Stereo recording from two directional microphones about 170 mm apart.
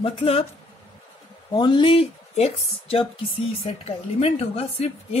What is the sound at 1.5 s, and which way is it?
A woman's voice, 25° left (ahead or behind).